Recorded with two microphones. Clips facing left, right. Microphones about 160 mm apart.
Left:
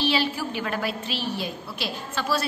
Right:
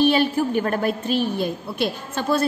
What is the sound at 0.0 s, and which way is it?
A woman's voice, 50° right (ahead or behind).